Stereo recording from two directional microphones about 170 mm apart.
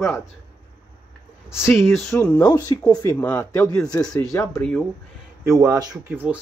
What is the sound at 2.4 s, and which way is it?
Speech, 25° left (ahead or behind).